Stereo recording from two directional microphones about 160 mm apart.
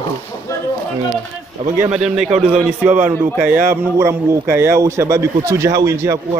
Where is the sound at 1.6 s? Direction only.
50° right (ahead or behind).